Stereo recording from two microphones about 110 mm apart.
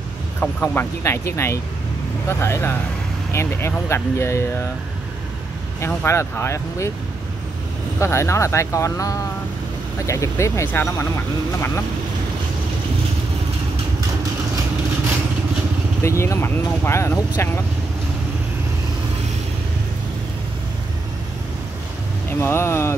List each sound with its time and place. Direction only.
0.4 s speech: 15° left (ahead or behind)
5.8 s speech: 25° left (ahead or behind)
8.0 s speech: 25° left (ahead or behind)
16.0 s speech: 25° left (ahead or behind)
22.4 s speech: 25° left (ahead or behind)